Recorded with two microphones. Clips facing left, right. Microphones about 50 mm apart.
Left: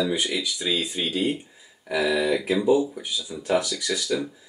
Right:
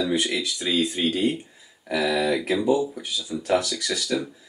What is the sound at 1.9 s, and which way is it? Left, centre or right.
Speech, centre.